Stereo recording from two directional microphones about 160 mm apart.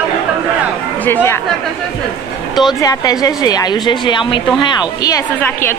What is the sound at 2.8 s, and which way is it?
A woman's voice, 25° left (ahead or behind).